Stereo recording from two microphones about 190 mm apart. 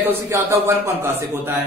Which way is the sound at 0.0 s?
15° right (ahead or behind).